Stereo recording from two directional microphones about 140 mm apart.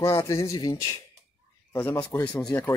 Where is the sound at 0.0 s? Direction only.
25° left (ahead or behind).